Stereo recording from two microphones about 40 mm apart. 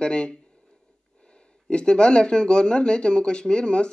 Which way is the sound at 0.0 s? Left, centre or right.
Left.